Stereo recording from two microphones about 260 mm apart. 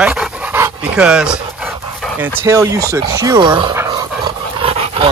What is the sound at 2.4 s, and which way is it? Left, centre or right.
Speech, centre.